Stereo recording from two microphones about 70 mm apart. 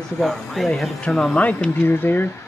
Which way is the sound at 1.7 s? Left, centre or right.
Left.